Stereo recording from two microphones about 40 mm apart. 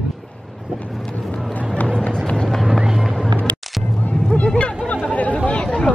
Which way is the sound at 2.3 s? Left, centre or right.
Left.